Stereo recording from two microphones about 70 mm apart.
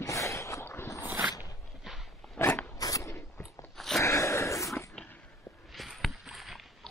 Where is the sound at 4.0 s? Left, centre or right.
Left.